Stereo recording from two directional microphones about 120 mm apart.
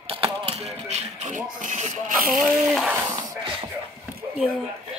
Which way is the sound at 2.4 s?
5° right (ahead or behind).